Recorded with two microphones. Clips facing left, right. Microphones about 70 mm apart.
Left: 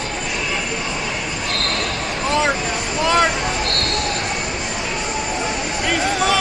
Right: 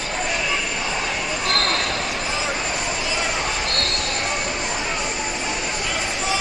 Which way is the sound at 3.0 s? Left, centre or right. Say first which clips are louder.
Left 13 dB; left.